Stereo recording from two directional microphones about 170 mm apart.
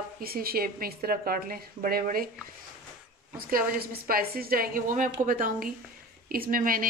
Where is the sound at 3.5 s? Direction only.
60° right (ahead or behind).